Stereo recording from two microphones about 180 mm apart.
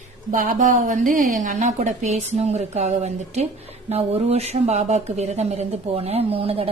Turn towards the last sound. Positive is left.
turn(degrees=-30)  # may be behind; listen again after turning